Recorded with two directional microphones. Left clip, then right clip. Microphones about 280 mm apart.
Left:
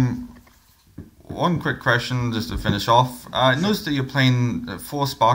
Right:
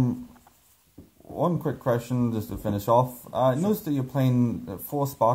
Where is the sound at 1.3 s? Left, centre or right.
Centre.